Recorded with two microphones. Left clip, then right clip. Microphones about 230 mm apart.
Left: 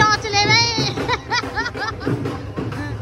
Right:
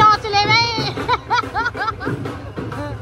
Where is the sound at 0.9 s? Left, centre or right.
Centre.